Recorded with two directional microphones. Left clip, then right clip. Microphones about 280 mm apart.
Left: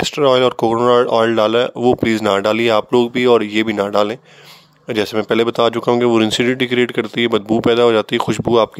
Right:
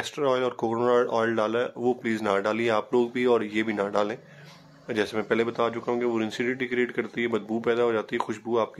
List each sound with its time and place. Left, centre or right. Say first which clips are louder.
0.0 s speech: left 12 dB; left